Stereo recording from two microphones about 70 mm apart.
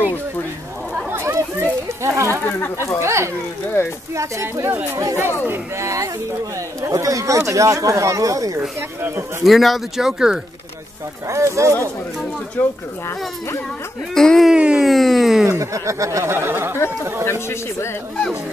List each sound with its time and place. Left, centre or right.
1.1 s chatter: right
3.0 s speech: right
3.8 s speech: left
4.1 s speech: right
8.5 s speech: right
9.4 s speech: centre
11.2 s speech: right
12.6 s speech: left
14.1 s speech: centre
14.5 s speech: centre
14.9 s a sound: centre
15.4 s speech: right
16.7 s chatter: left